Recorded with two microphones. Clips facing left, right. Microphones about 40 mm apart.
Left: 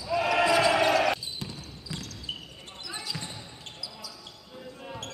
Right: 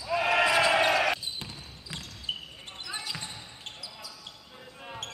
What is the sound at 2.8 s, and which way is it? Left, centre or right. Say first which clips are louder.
Basketball bounce: even; centre.